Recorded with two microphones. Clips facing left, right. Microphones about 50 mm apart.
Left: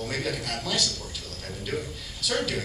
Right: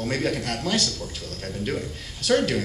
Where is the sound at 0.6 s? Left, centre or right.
Right.